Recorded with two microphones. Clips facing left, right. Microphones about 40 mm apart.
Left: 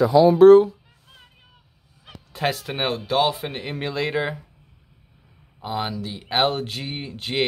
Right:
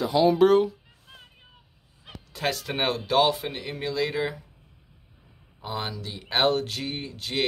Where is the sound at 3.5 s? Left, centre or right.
Left.